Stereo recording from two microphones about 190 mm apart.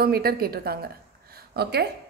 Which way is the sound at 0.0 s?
55° right (ahead or behind).